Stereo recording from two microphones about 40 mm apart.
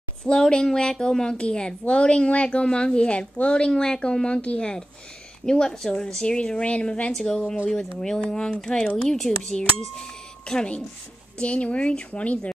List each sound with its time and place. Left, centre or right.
0.2 s a woman's voice: left
7.1 s a woman's voice: centre
8.9 s speech: centre
9.5 s a sound: centre
11.3 s speech: left